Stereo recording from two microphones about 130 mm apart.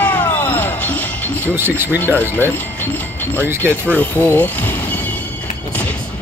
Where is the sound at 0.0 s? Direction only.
15° left (ahead or behind).